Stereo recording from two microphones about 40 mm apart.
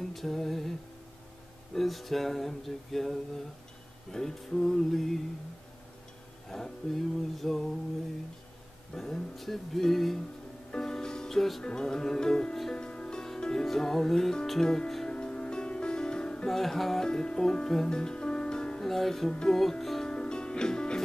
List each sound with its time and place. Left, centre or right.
0.1 s music: centre
1.8 s a sound: centre
4.1 s music: centre
6.5 s a sound: centre
8.9 s music: centre
10.7 s music: centre
11.6 s music: centre
15.0 s music: left
16.4 s music: centre
17.1 s music: centre
18.9 s music: centre
20.1 s music: left